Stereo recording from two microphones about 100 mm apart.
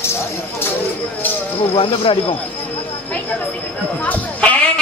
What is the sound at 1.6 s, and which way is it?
Speech, 65° left (ahead or behind).